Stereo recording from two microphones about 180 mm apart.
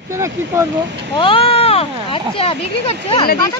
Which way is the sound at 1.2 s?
30° left (ahead or behind).